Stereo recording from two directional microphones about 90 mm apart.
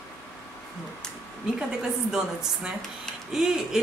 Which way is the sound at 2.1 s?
10° right (ahead or behind).